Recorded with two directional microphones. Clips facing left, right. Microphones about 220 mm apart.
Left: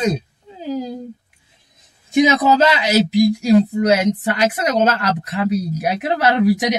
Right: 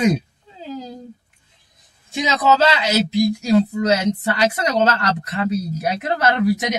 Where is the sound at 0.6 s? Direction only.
15° left (ahead or behind).